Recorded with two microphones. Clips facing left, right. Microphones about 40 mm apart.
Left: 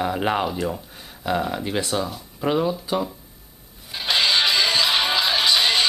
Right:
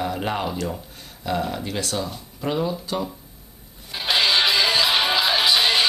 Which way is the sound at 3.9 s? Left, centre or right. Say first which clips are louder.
Even; centre.